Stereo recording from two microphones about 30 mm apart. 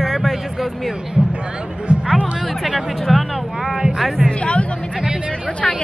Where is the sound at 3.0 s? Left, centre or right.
Centre.